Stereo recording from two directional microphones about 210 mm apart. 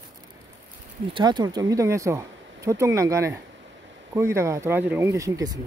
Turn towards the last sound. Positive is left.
turn(degrees=-15)  # may be behind; listen again after turning